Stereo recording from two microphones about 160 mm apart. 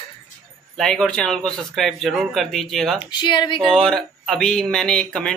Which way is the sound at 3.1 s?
30° left (ahead or behind).